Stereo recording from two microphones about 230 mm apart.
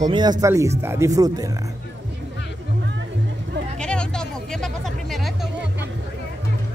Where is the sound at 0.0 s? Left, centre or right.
Centre.